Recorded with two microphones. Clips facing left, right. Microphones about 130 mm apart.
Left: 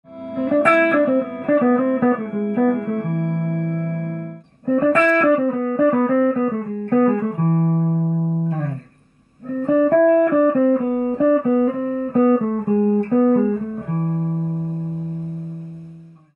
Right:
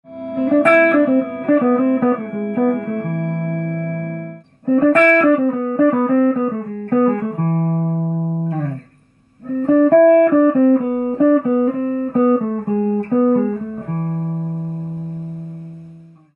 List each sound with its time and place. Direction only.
0.4 s music: 5° left (ahead or behind)
2.5 s music: 5° right (ahead or behind)
2.8 s music: 10° left (ahead or behind)
8.1 s music: 15° right (ahead or behind)
9.6 s music: centre (ahead or behind)
12.1 s music: 5° right (ahead or behind)